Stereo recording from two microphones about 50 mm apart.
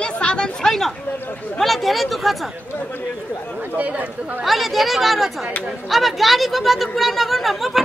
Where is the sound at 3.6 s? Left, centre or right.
Right.